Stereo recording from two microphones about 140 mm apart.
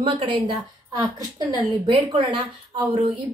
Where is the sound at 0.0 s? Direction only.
35° right (ahead or behind).